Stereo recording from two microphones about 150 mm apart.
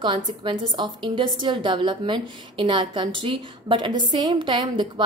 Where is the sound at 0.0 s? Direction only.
35° right (ahead or behind).